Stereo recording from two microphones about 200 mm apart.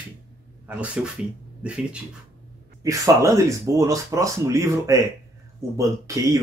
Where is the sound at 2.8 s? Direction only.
15° right (ahead or behind).